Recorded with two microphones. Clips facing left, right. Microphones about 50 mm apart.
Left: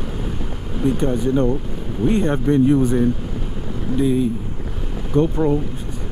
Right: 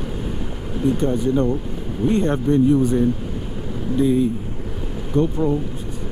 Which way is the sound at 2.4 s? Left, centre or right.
Left.